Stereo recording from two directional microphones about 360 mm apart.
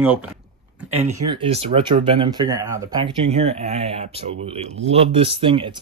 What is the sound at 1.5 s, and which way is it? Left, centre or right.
Speech, centre.